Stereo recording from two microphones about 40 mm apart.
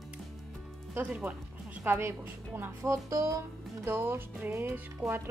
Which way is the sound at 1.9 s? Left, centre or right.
Right.